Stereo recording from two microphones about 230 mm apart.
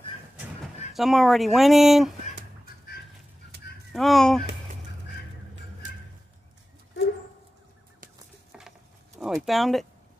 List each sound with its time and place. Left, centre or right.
0.9 s speech: centre
3.5 s honk: right
3.9 s speech: centre
8.5 s a sound: centre
9.2 s speech: centre